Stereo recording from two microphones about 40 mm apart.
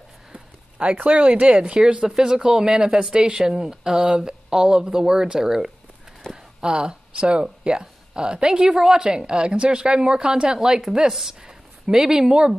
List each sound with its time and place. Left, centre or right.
0.3 s a sound: right
1.1 s speech: right
1.6 s a woman's voice: right
2.0 s speech: centre
6.2 s a sound: centre
6.6 s a woman's voice: right